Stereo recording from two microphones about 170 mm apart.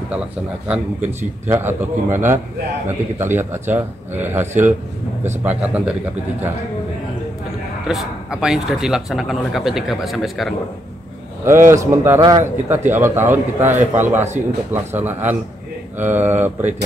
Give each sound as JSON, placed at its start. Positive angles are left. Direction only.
{"t": 0.7, "sound": "speech", "side_deg": -10}
{"t": 7.8, "sound": "speech", "side_deg": 0}
{"t": 11.4, "sound": "a man's voice", "side_deg": -15}